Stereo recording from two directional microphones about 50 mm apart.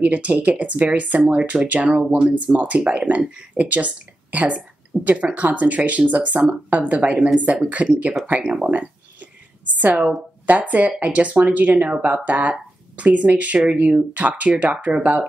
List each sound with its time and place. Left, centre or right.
0.0 s speech: right
8.6 s a sound: right
9.8 s speech: right